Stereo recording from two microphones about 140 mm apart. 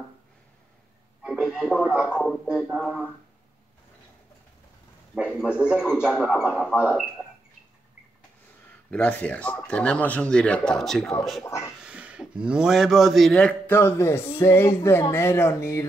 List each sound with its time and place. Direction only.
1.2 s radio: 5° right (ahead or behind)
1.9 s speech: 5° right (ahead or behind)
5.1 s a man's voice: 5° right (ahead or behind)
8.9 s speech: 10° left (ahead or behind)
11.4 s speech: 20° left (ahead or behind)
11.8 s speech: 10° right (ahead or behind)
13.7 s speech: 15° left (ahead or behind)